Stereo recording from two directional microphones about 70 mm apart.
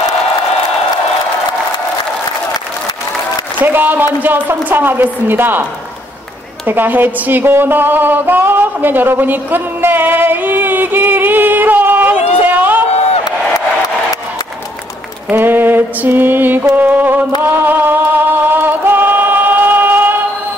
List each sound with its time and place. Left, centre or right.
3.6 s a woman's voice: right
6.6 s a sound: right
15.3 s mantra: right
16.7 s a woman's voice: right
17.5 s music: right